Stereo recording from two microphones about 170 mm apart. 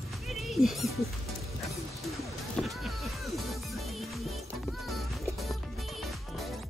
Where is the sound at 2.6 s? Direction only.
5° left (ahead or behind).